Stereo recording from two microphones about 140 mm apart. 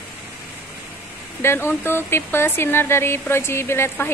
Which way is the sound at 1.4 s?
15° left (ahead or behind).